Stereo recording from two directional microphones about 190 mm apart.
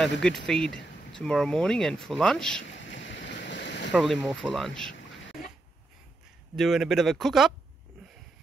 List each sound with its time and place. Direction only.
0.5 s speech: 5° left (ahead or behind)
2.6 s boat: 75° left (ahead or behind)
3.9 s speech: centre (ahead or behind)
6.5 s speech: centre (ahead or behind)